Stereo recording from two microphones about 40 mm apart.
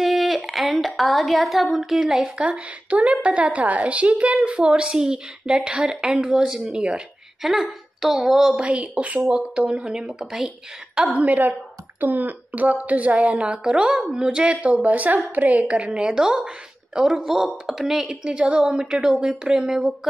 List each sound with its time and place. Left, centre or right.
0.0 s speech: centre
2.0 s a woman's voice: centre
2.2 s a woman's voice: right
4.9 s speech: centre
5.5 s a woman's voice: right
6.2 s a woman's voice: centre
7.4 s speech: centre
8.5 s a woman's voice: right
11.1 s a woman's voice: right
13.5 s a woman's voice: right
14.6 s a woman's voice: right
16.2 s a woman's voice: centre
17.1 s speech: centre
18.0 s a woman's voice: right